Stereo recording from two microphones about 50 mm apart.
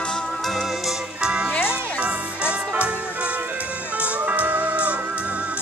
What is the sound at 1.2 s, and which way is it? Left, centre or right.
Music, centre.